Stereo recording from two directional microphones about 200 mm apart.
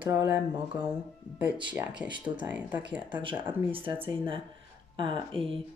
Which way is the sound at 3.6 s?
25° right (ahead or behind).